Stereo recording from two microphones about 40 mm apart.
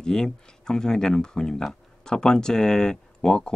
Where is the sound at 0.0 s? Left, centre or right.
Centre.